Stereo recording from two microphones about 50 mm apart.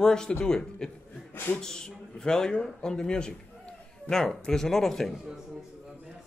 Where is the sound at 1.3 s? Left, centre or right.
Left.